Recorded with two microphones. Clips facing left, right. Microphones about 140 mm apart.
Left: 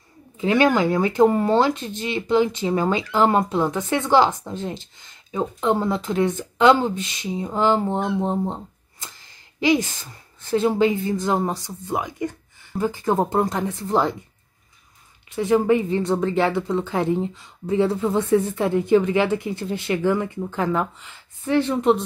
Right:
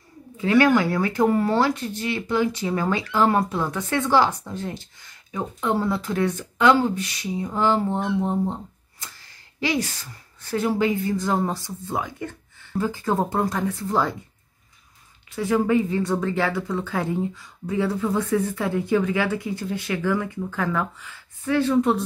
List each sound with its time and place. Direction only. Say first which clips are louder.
0.4 s speech: even; 20° left (ahead or behind)
15.3 s speech: left 2 dB; 20° left (ahead or behind)